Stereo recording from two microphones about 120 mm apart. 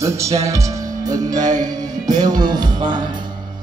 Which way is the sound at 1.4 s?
90° right.